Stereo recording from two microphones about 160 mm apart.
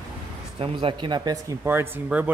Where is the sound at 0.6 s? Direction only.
30° right (ahead or behind); by 2.3 s 10° right (ahead or behind).